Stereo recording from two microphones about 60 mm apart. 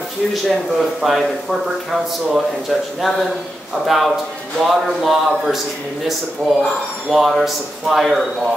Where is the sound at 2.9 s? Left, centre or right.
Centre.